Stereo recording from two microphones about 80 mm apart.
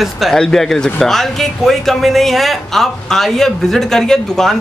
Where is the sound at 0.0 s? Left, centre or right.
Centre.